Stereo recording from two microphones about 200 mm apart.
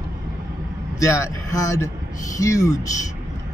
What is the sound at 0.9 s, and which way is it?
Speech, 15° left (ahead or behind).